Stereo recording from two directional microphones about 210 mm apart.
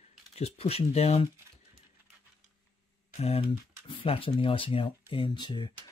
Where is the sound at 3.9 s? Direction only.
25° left (ahead or behind).